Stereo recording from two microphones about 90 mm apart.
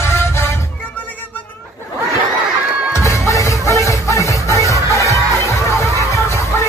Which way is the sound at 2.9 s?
35° left (ahead or behind).